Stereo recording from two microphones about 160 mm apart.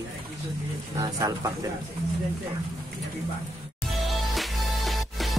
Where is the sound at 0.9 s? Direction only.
25° right (ahead or behind).